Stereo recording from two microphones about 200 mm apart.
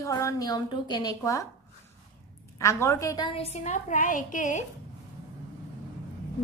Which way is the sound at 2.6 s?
15° left (ahead or behind).